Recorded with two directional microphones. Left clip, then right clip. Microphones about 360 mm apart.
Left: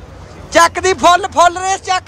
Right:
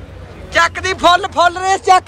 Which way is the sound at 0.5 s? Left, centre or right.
Centre.